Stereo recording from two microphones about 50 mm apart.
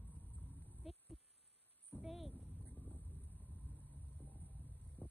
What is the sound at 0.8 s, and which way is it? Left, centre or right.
Insect, centre.